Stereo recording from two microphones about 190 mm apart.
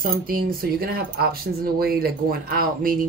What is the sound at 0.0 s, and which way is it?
Speech, 50° right (ahead or behind).